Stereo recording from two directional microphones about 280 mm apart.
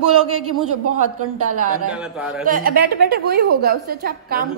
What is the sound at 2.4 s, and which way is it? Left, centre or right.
A woman's voice, right.